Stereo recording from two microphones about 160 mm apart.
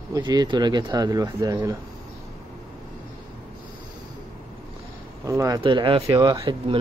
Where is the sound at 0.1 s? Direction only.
25° right (ahead or behind).